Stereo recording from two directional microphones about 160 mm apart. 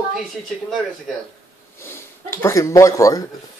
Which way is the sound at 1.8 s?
15° left (ahead or behind).